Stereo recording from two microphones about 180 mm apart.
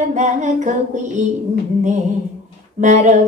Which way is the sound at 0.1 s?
40° right (ahead or behind).